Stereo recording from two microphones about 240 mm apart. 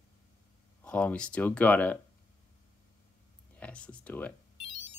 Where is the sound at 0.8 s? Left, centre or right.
Centre.